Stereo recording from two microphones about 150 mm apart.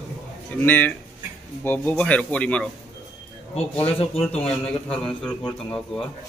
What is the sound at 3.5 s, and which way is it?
Speech, 40° left (ahead or behind).